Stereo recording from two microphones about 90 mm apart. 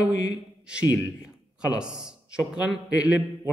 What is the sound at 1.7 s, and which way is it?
A man's voice, 10° right (ahead or behind).